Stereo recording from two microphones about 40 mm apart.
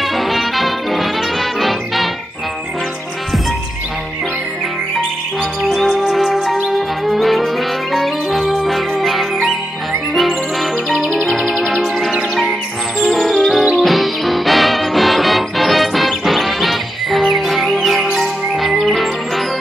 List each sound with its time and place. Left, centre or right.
0.0 s music: centre
5.7 s music: centre
13.1 s music: centre